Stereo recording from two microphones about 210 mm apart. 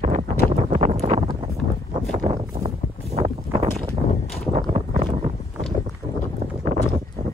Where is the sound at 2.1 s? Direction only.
20° right (ahead or behind).